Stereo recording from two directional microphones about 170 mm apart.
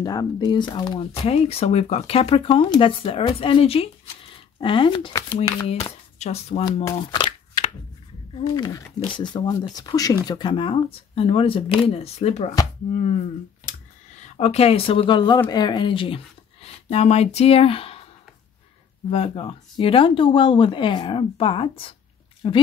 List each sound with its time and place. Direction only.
0.0 s speech: 25° left (ahead or behind); by 6.6 s 40° left (ahead or behind)
6.6 s speech: 20° left (ahead or behind)
8.4 s speech: 30° left (ahead or behind)
14.2 s speech: 40° left (ahead or behind)
19.0 s speech: 35° left (ahead or behind)